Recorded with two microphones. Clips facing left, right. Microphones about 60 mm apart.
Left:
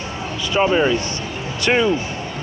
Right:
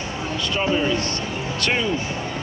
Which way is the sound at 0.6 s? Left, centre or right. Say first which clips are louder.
Left 6 dB; left.